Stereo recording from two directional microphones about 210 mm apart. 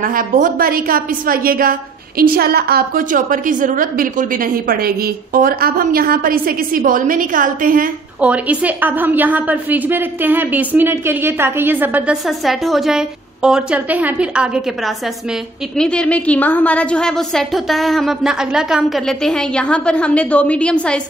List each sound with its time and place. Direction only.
0.0 s a woman's voice: 40° right (ahead or behind)
8.2 s a woman's voice: 5° right (ahead or behind)
15.8 s a woman's voice: 5° left (ahead or behind)